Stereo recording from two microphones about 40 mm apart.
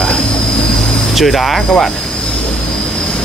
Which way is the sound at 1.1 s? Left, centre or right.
Centre.